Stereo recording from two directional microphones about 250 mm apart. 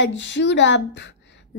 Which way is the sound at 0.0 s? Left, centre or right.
Left.